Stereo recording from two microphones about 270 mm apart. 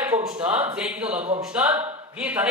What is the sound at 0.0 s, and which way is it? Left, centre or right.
A woman's voice, centre.